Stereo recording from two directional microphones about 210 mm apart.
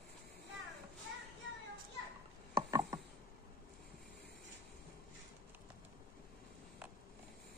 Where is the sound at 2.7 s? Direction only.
15° right (ahead or behind).